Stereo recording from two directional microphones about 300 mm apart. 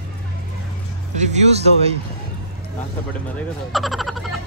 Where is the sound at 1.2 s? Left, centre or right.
Right.